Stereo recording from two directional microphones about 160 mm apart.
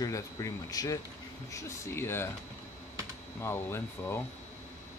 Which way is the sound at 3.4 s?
15° left (ahead or behind).